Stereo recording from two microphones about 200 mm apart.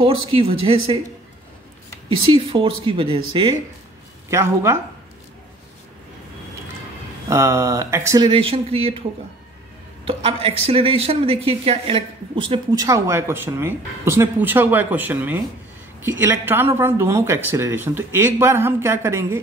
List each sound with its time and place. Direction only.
0.0 s speech: 25° right (ahead or behind)
2.0 s speech: 25° right (ahead or behind)
4.3 s speech: 15° right (ahead or behind)
7.2 s speech: 15° right (ahead or behind)
10.0 s speech: 25° right (ahead or behind)